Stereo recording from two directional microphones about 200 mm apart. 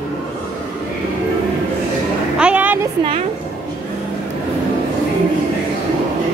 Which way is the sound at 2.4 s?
5° right (ahead or behind).